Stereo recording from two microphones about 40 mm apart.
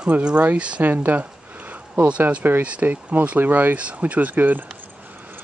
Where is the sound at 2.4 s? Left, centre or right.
Right.